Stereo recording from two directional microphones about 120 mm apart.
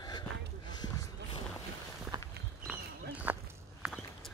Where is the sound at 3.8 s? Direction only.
Centre (ahead or behind).